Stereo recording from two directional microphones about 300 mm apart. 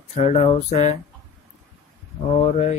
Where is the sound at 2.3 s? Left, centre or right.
Left.